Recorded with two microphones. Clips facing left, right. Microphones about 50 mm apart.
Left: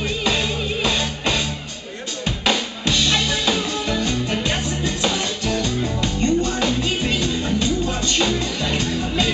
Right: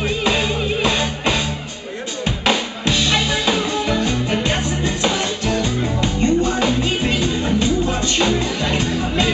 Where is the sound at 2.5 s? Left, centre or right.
Centre.